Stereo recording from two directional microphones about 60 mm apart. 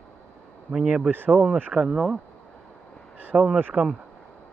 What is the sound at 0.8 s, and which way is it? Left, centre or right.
Speech, centre.